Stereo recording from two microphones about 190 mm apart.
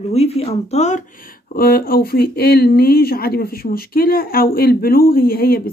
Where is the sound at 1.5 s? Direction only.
50° left (ahead or behind).